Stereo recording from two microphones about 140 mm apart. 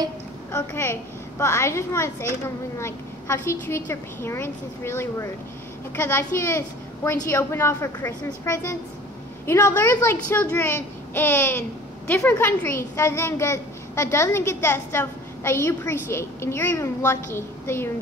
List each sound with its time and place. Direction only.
0.5 s a woman's voice: 20° left (ahead or behind)